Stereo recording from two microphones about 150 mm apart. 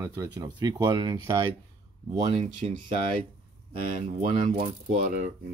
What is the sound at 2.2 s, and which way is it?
Speech, 35° right (ahead or behind).